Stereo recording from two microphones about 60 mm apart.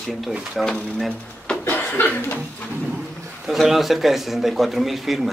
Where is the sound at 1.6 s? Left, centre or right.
Left.